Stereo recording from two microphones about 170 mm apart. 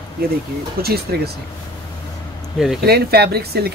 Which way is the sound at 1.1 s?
60° right (ahead or behind).